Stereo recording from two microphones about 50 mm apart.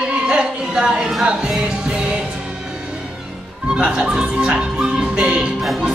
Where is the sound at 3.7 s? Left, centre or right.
Centre.